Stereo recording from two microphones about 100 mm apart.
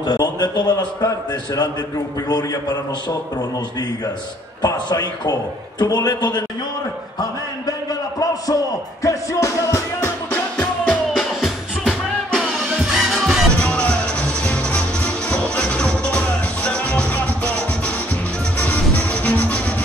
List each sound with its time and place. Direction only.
0.0 s a man's voice: 45° left (ahead or behind)
1.0 s a man's voice: 35° left (ahead or behind)
4.6 s a man's voice: 45° left (ahead or behind)
7.2 s a sound: 40° left (ahead or behind)
9.0 s music: 30° left (ahead or behind)
10.3 s music: 15° left (ahead or behind)
11.1 s music: centre (ahead or behind)
13.6 s music: 10° left (ahead or behind)